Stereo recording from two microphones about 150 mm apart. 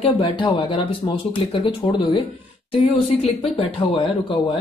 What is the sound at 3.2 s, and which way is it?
Speech, 40° left (ahead or behind).